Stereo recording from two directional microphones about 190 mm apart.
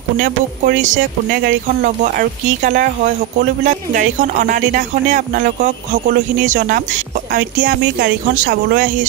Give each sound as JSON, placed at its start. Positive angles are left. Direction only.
{"t": 0.2, "sound": "speech", "side_deg": -45}